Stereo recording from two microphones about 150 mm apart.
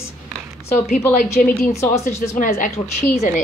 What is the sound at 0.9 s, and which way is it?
Speech, 65° left (ahead or behind).